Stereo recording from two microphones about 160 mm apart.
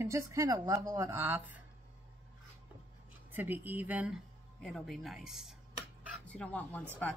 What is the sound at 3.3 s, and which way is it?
Speech, 10° right (ahead or behind).